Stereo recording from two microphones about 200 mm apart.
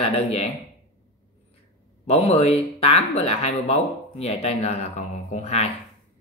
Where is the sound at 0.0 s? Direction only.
30° left (ahead or behind).